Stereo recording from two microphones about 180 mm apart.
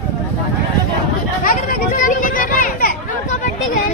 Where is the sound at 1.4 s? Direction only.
50° left (ahead or behind).